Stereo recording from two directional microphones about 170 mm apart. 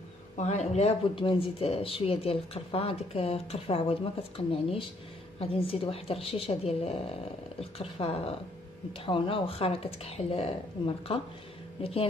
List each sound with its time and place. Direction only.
0.4 s speech: 40° left (ahead or behind)